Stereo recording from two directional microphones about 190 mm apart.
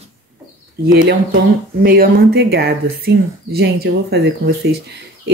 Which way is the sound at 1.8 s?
50° right (ahead or behind).